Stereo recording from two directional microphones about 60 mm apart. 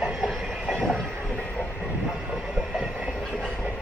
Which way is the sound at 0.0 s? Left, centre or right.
Centre.